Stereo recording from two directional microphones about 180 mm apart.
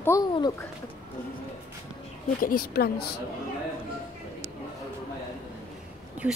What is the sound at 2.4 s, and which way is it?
Speech, 55° left (ahead or behind).